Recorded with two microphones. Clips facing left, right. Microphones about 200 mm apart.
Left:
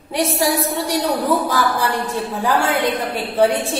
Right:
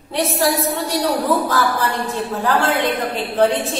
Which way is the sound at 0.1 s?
15° left (ahead or behind).